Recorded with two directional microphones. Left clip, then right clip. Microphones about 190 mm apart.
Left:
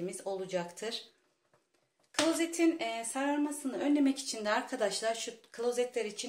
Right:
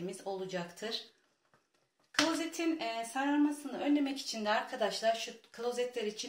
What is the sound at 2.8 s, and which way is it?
Speech, 10° left (ahead or behind).